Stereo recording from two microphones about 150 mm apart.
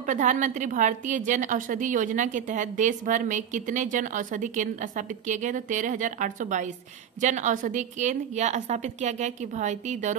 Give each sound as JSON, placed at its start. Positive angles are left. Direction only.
{"t": 0.0, "sound": "a woman's voice", "side_deg": -55}